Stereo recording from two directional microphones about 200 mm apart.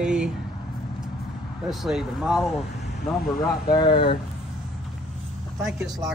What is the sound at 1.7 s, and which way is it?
Speech, centre (ahead or behind).